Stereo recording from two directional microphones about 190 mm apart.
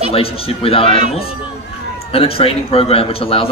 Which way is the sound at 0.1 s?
30° left (ahead or behind).